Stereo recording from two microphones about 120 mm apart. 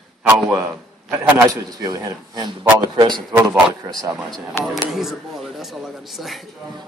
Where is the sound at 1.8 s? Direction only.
35° right (ahead or behind).